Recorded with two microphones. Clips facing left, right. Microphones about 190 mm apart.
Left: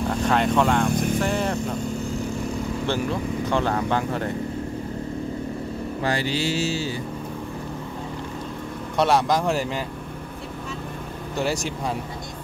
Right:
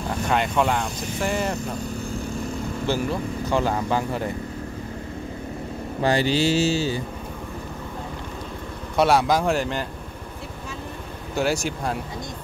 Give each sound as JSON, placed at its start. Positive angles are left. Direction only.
{"t": 0.3, "sound": "speech", "side_deg": -5}
{"t": 0.8, "sound": "vehicle", "side_deg": 55}
{"t": 1.2, "sound": "speech", "side_deg": 0}
{"t": 2.9, "sound": "speech", "side_deg": -5}
{"t": 6.0, "sound": "mantra", "side_deg": -25}
{"t": 8.9, "sound": "speech", "side_deg": -5}
{"t": 11.3, "sound": "speech", "side_deg": 0}